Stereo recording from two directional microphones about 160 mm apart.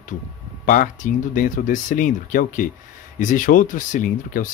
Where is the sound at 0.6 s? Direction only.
55° left (ahead or behind).